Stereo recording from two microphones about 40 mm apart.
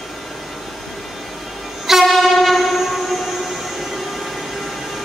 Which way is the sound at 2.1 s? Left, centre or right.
Centre.